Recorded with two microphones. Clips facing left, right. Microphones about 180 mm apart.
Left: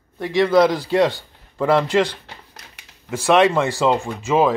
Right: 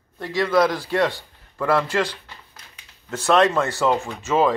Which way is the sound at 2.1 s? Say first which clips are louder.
Left 3 dB; 75° left (ahead or behind).